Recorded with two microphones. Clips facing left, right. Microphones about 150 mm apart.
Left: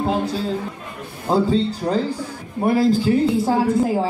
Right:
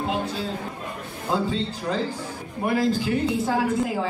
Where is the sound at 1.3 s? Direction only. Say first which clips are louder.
Left 7 dB; 35° left (ahead or behind).